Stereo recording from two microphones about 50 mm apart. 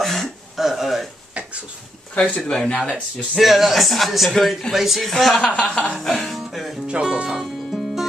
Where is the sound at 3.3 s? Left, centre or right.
Centre.